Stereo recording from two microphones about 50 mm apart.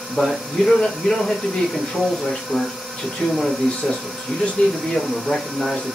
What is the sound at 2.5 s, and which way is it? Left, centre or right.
Speech, centre.